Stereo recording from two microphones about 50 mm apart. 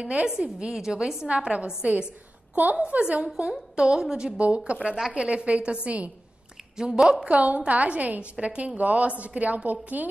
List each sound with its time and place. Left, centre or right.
0.0 s a woman's voice: centre
2.5 s a woman's voice: right
2.8 s a woman's voice: right
4.6 s a woman's voice: right
6.8 s a woman's voice: centre
7.1 s a woman's voice: right